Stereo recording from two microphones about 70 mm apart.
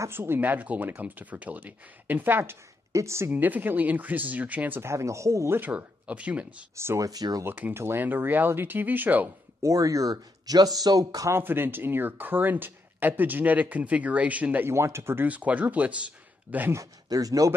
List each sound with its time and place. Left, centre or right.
0.1 s speech: right
2.9 s speech: right
3.3 s speech: right
4.8 s speech: right
5.5 s speech: right
6.8 s speech: right
7.1 s speech: right
7.4 s speech: right
7.7 s speech: right
9.6 s speech: right
11.3 s speech: right
14.7 s speech: right
15.2 s speech: right
16.7 s speech: right